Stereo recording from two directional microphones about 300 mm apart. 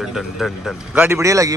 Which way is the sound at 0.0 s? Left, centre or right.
Centre.